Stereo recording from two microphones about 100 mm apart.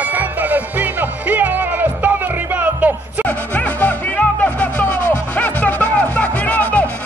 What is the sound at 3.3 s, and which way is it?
Music, 15° left (ahead or behind).